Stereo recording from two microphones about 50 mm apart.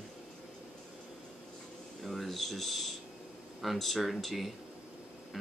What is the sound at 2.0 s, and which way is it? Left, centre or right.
Speech, centre.